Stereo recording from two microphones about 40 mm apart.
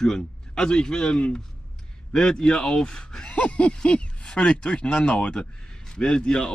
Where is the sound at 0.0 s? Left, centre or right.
Centre.